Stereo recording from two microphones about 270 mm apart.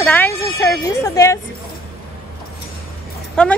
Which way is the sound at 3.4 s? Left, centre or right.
Centre.